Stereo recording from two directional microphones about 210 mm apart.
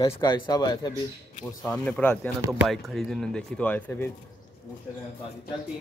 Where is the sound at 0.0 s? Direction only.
20° left (ahead or behind).